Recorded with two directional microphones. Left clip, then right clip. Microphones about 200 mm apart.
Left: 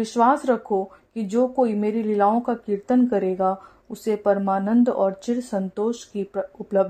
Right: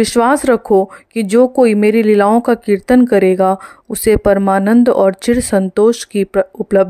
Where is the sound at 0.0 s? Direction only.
40° right (ahead or behind).